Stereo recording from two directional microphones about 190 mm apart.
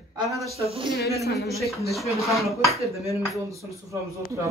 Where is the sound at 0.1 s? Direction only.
15° right (ahead or behind).